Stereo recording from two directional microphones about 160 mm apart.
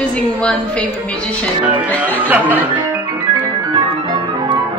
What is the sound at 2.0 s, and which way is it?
Speech, 10° right (ahead or behind).